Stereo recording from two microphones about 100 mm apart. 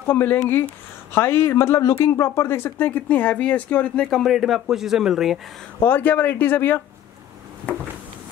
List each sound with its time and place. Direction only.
0.0 s speech: 20° left (ahead or behind); by 5.4 s 5° right (ahead or behind)
5.8 s speech: 20° left (ahead or behind)